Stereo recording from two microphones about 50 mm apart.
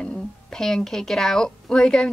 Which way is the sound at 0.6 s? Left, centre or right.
Centre.